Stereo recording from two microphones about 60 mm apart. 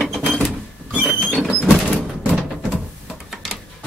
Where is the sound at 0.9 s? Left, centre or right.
Right.